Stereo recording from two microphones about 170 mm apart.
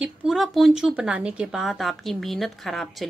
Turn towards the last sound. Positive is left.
turn(degrees=0)  # may be behind; listen again after turning